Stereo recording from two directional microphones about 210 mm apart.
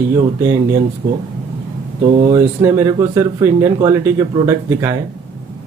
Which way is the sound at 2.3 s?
15° right (ahead or behind).